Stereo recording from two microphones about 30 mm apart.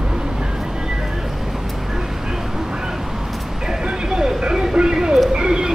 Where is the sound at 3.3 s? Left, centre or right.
Centre.